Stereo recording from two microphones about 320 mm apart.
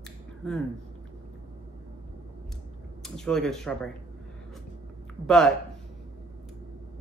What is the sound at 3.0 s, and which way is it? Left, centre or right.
Speech, centre.